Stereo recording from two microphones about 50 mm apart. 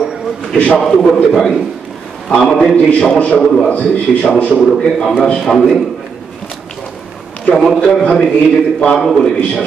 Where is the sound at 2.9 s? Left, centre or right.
Left.